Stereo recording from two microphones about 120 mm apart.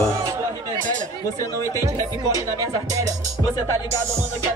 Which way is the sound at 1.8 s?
30° right (ahead or behind).